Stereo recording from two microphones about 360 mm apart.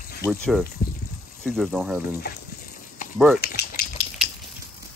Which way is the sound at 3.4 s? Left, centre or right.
Left.